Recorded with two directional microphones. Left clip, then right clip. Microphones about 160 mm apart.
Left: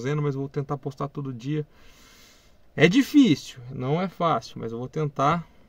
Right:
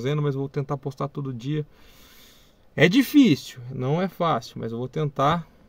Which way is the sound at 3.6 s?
20° right (ahead or behind).